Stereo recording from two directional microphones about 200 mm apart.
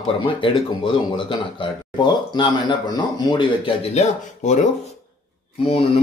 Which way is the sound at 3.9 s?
35° left (ahead or behind).